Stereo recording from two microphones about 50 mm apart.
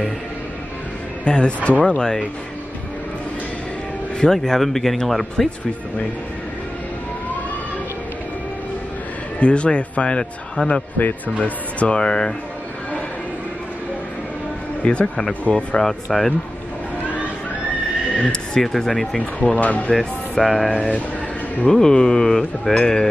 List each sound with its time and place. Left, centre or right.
1.2 s a man's voice: left
4.2 s speech: centre
9.4 s a man's voice: left
11.0 s a man's voice: left
11.4 s a man's voice: left
14.8 s a man's voice: left
15.5 s speech: centre
18.1 s a sound: centre
18.5 s speech: centre
19.1 s a man's voice: left
19.9 s speech: centre
20.7 s a man's voice: left